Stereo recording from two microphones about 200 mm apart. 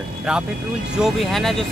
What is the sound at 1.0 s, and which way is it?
Speech, centre (ahead or behind).